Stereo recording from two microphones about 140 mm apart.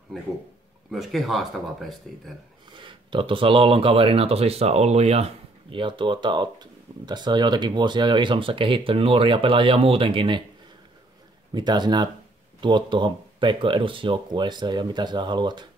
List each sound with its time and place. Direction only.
0.9 s speech: centre (ahead or behind)
2.7 s speech: 35° right (ahead or behind)
11.5 s speech: 30° right (ahead or behind)